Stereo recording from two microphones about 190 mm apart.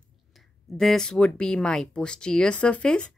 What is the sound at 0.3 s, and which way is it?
A woman's voice, centre (ahead or behind).